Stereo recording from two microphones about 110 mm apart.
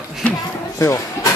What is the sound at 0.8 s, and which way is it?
Speech, 30° left (ahead or behind).